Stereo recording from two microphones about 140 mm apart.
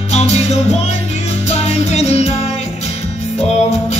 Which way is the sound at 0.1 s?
50° left (ahead or behind).